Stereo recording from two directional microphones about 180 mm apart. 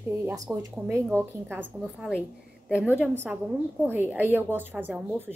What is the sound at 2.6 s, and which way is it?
A woman's voice, 5° right (ahead or behind).